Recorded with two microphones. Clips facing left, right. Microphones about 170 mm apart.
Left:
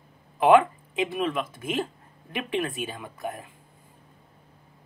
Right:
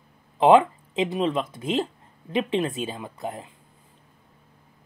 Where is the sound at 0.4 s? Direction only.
25° right (ahead or behind).